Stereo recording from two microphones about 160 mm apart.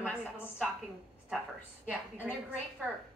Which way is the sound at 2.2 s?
5° right (ahead or behind).